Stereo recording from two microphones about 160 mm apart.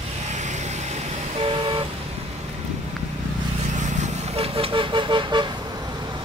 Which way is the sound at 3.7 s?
50° right (ahead or behind).